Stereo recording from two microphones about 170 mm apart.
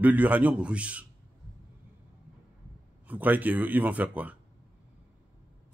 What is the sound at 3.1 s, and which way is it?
A man's voice, 10° right (ahead or behind).